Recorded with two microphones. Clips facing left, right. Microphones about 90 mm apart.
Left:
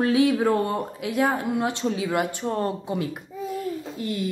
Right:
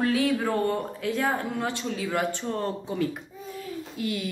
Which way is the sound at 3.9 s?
35° left (ahead or behind).